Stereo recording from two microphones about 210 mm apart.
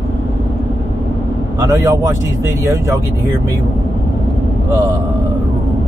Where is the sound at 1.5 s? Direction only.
15° right (ahead or behind).